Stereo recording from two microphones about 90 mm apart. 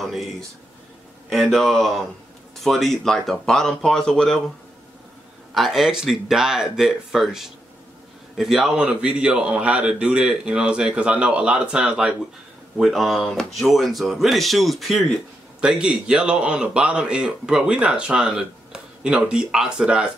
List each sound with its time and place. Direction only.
0.0 s a sound: centre (ahead or behind)
1.3 s speech: centre (ahead or behind)
5.5 s speech: centre (ahead or behind)
12.7 s speech: centre (ahead or behind)